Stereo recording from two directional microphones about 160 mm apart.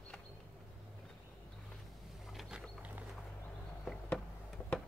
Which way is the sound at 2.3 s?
5° right (ahead or behind).